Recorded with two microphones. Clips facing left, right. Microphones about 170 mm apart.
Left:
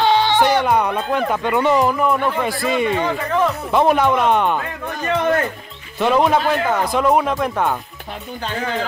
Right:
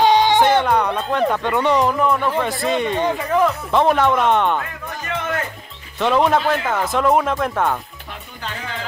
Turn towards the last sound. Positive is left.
turn(degrees=0)  # may be behind; listen again after turning